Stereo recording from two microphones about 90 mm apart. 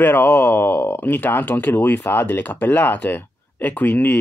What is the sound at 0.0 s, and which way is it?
Speech, 25° left (ahead or behind).